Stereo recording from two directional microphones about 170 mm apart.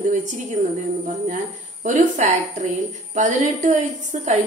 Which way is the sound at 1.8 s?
45° right (ahead or behind).